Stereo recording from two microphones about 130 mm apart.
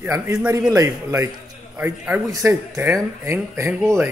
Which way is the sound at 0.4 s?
10° right (ahead or behind).